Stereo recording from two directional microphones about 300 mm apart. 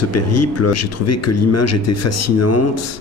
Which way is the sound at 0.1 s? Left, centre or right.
Left.